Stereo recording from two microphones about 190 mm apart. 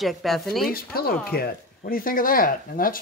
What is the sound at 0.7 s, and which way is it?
Speech, 50° left (ahead or behind).